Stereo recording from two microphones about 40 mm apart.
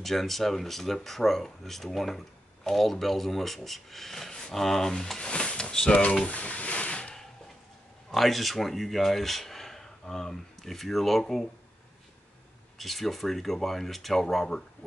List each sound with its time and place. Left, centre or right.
0.0 s speech: centre
5.2 s speech: left
6.2 s a sound: left
8.1 s speech: centre
12.7 s speech: centre